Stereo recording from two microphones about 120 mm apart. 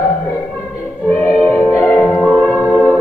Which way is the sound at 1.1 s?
20° left (ahead or behind).